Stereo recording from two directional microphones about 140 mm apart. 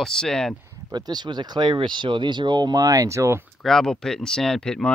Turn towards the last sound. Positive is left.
turn(degrees=5)  # may be behind; listen again after turning